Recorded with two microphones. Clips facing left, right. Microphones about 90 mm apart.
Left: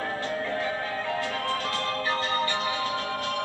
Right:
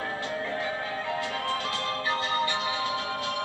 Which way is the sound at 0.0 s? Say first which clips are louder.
Left 2 dB; 15° right (ahead or behind).